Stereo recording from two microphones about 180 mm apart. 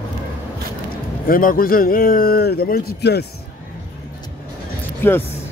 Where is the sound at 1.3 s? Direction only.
50° left (ahead or behind).